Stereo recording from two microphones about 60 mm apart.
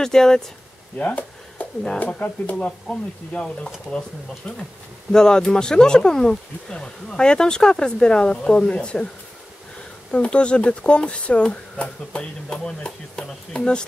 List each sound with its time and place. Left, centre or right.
0.0 s speech: centre
0.9 s a sound: left
2.0 s speech: left
5.1 s speech: centre
10.1 s speech: centre